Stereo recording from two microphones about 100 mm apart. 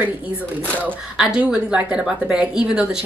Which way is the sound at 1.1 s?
5° right (ahead or behind).